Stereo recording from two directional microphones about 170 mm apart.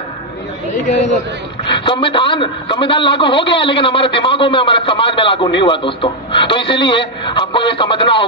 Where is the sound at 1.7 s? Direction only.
30° left (ahead or behind).